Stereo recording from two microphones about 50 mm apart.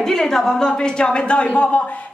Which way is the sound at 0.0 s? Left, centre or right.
Centre.